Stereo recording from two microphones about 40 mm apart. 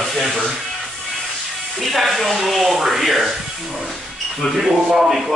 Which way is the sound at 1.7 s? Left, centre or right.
Centre.